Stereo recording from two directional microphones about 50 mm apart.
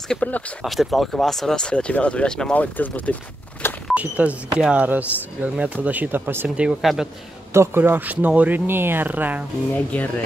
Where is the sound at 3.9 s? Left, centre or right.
Right.